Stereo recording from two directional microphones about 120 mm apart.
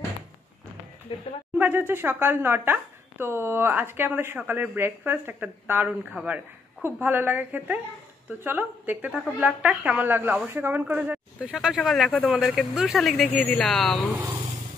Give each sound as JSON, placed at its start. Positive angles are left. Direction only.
{"t": 1.1, "sound": "speech", "side_deg": 45}
{"t": 1.6, "sound": "a woman's voice", "side_deg": -20}
{"t": 14.1, "sound": "speech", "side_deg": -25}